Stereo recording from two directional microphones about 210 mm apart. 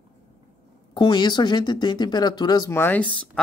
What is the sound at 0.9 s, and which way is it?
Speech, 20° left (ahead or behind).